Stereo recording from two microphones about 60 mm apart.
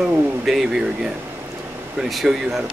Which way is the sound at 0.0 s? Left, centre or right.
Centre.